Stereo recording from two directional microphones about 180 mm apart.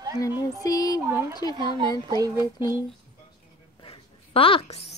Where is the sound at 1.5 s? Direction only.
25° right (ahead or behind).